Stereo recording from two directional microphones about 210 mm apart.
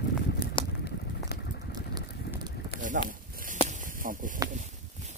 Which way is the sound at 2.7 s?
50° left (ahead or behind).